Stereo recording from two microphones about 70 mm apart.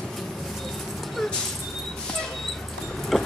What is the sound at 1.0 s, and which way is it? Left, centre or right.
Dog, centre.